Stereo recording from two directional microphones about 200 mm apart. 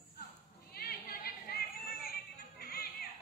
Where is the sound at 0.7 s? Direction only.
50° left (ahead or behind).